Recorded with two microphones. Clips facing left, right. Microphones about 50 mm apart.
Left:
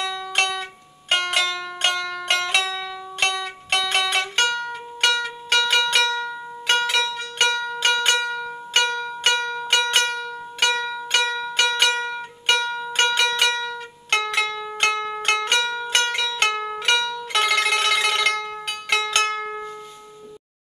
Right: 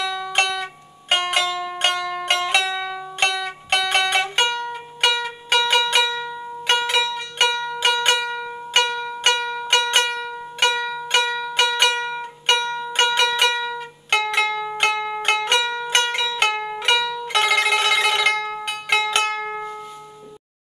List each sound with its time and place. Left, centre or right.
0.0 s music: centre
19.5 s music: centre